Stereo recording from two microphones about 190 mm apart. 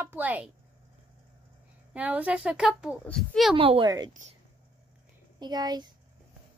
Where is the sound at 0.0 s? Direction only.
10° right (ahead or behind).